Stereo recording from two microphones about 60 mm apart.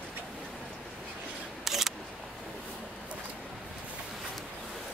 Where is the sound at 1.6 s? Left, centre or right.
Centre.